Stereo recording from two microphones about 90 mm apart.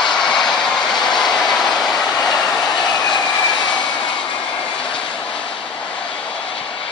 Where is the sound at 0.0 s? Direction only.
5° left (ahead or behind).